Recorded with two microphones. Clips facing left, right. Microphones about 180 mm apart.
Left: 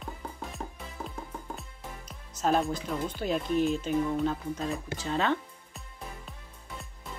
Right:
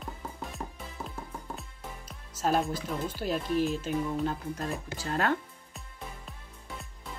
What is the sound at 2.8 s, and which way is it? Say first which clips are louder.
Speech: left 1 dB; 5° right (ahead or behind).